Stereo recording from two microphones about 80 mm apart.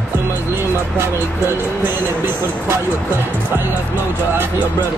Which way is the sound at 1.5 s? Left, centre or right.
Right.